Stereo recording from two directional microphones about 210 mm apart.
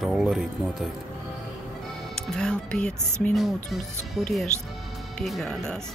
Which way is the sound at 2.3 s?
5° left (ahead or behind).